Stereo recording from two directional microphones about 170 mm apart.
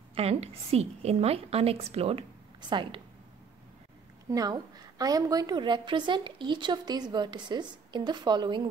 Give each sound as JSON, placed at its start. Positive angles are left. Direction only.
{"t": 0.1, "sound": "a woman's voice", "side_deg": -35}
{"t": 4.3, "sound": "a woman's voice", "side_deg": -20}